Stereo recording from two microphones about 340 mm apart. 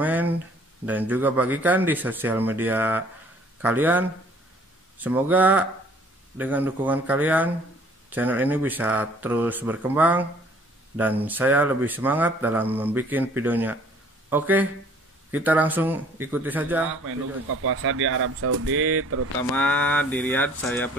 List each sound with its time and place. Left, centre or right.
0.0 s a sound: centre
0.8 s speech: centre
11.2 s speech: centre
17.6 s speech: right
19.5 s speech: centre